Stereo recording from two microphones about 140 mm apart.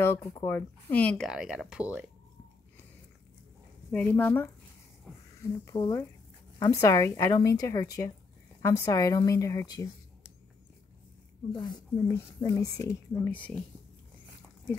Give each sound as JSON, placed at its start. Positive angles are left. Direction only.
{"t": 0.0, "sound": "speech", "side_deg": 20}
{"t": 1.2, "sound": "speech", "side_deg": -5}
{"t": 3.9, "sound": "speech", "side_deg": 15}
{"t": 5.1, "sound": "a sound", "side_deg": 5}
{"t": 5.4, "sound": "a woman's voice", "side_deg": 20}
{"t": 11.5, "sound": "a woman's voice", "side_deg": 30}
{"t": 13.3, "sound": "speech", "side_deg": 10}